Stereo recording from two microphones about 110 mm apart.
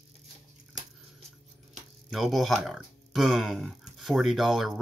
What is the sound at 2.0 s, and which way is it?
Speech, centre (ahead or behind).